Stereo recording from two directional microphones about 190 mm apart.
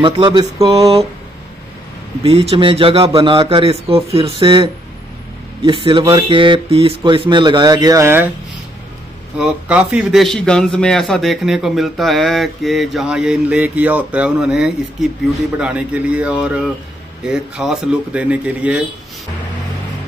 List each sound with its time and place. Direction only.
0.0 s speech: 25° right (ahead or behind)
2.2 s speech: 30° right (ahead or behind); by 8.3 s 15° right (ahead or behind)
9.4 s a man's voice: 5° right (ahead or behind)